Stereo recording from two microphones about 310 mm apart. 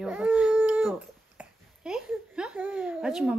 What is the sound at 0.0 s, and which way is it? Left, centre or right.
Baby cry, centre.